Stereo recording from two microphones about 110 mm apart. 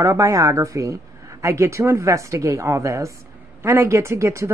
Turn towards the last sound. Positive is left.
turn(degrees=-25)  # may be behind; listen again after turning